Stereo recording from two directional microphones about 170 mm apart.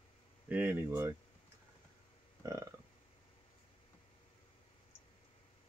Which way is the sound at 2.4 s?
15° right (ahead or behind).